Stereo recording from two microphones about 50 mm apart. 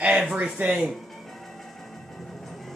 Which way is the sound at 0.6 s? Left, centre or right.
Right.